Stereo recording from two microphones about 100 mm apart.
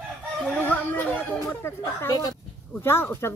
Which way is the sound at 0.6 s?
15° left (ahead or behind).